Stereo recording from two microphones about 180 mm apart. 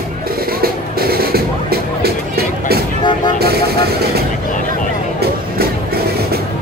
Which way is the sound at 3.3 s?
60° right (ahead or behind).